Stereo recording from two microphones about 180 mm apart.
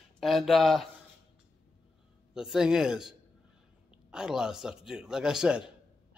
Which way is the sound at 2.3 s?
5° right (ahead or behind).